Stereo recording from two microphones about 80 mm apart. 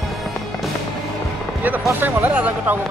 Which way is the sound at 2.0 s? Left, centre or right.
Right.